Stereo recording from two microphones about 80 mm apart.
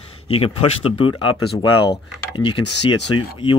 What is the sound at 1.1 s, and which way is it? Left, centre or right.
Speech, left.